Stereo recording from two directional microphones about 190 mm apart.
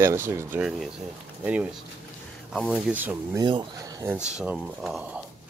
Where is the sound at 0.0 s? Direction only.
15° right (ahead or behind).